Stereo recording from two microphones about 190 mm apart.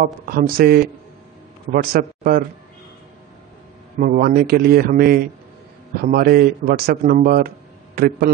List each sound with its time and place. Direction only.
0.0 s a man's voice: 50° right (ahead or behind)
4.0 s a man's voice: 50° right (ahead or behind)